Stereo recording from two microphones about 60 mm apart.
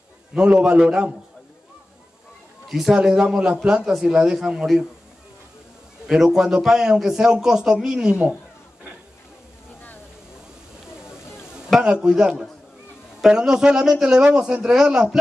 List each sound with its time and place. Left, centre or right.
0.3 s a man's voice: centre
2.7 s a man's voice: centre
6.0 s a man's voice: centre
11.8 s a man's voice: centre